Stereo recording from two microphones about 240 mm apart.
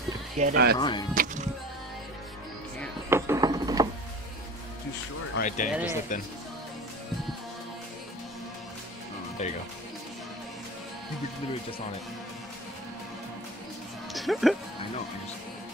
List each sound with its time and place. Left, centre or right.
0.4 s speech: right
0.7 s speech: centre
1.1 s music: right
3.1 s a sound: centre
5.7 s speech: centre
9.4 s speech: left
14.1 s speech: centre